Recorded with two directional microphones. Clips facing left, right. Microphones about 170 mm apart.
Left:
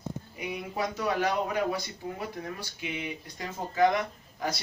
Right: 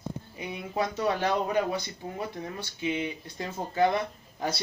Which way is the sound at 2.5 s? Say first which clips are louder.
Right 6 dB; 25° right (ahead or behind).